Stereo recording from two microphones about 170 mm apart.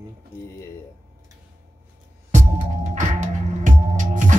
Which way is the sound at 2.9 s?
45° right (ahead or behind).